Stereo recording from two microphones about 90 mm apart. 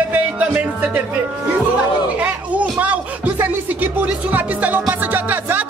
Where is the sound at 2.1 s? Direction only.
15° right (ahead or behind).